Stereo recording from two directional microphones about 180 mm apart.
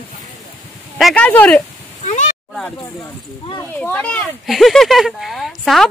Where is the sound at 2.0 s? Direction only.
40° left (ahead or behind).